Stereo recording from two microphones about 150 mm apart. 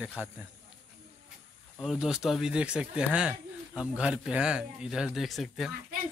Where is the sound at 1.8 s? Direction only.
5° right (ahead or behind).